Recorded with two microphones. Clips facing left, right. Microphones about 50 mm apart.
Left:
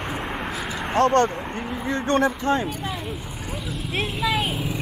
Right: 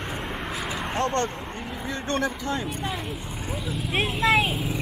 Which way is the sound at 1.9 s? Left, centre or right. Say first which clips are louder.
Left 6 dB; left.